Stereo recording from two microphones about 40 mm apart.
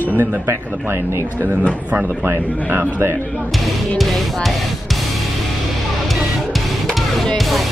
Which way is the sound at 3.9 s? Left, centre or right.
Centre.